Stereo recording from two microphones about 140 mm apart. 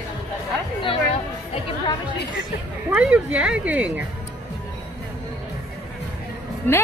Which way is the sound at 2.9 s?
10° right (ahead or behind).